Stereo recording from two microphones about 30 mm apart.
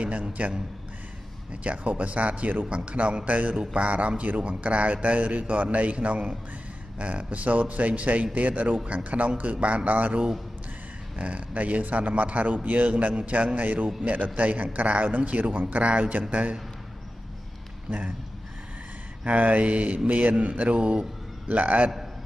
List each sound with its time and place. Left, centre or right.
0.2 s a man's voice: right
1.5 s a man's voice: right
3.1 s a man's voice: right
13.1 s a man's voice: right
19.2 s a man's voice: right
21.5 s a man's voice: right